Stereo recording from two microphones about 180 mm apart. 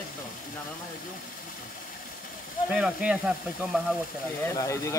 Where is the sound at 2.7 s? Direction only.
5° right (ahead or behind).